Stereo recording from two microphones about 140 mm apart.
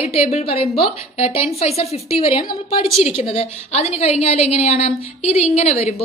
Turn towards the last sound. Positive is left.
turn(degrees=50)  # may be behind; listen again after turning